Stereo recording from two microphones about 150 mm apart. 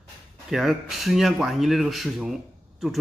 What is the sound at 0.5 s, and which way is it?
A man's voice, centre (ahead or behind).